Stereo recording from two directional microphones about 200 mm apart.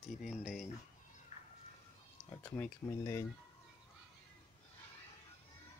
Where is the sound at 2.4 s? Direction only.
10° left (ahead or behind).